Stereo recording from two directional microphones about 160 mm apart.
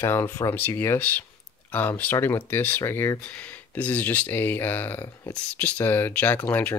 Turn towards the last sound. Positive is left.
turn(degrees=10)  # may be behind; listen again after turning